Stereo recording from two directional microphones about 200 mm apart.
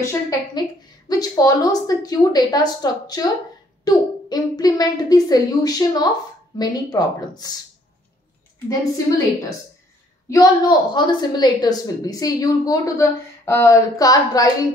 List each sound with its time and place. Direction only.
0.0 s a woman's voice: 15° left (ahead or behind)
8.6 s a woman's voice: 15° left (ahead or behind)